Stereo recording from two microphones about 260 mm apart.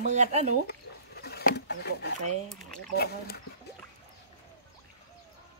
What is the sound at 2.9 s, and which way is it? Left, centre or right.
Speech, left.